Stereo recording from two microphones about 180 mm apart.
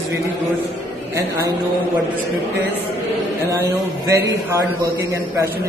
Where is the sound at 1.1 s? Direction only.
15° right (ahead or behind).